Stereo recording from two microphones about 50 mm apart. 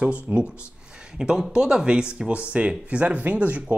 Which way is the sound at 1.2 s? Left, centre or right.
Centre.